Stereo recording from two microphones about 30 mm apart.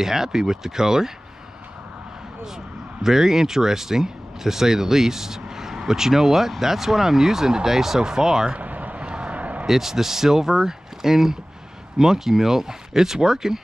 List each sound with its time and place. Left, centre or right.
0.0 s speech: centre
3.0 s speech: centre
8.5 s vehicle: right
9.0 s a sound: right
9.7 s speech: centre